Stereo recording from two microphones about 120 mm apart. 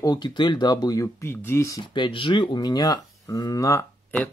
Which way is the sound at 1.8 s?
40° left (ahead or behind).